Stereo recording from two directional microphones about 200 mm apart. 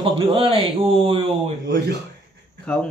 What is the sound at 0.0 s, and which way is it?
Speech, 25° right (ahead or behind).